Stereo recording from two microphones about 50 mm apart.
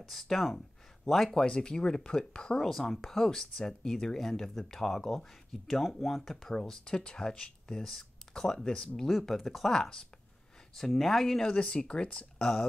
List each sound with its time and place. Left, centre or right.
0.0 s speech: centre
1.4 s speech: centre
2.6 s speech: centre
6.5 s speech: centre
9.0 s speech: centre
11.4 s speech: centre